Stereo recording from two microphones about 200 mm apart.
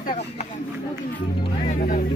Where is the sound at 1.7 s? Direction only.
40° left (ahead or behind).